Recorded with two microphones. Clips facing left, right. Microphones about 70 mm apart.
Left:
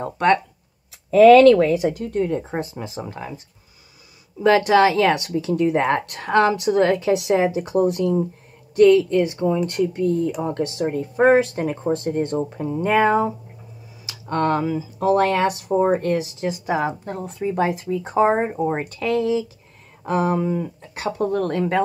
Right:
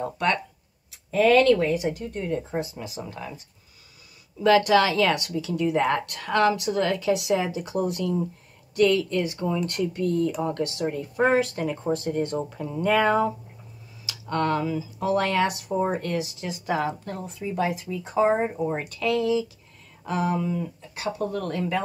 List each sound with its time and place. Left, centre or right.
0.0 s a woman's voice: left
1.1 s a woman's voice: left
2.5 s a woman's voice: left
4.4 s a woman's voice: left
14.3 s a woman's voice: left
17.3 s a woman's voice: left